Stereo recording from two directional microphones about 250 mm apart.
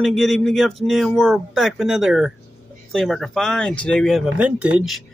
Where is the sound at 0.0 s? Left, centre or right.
Centre.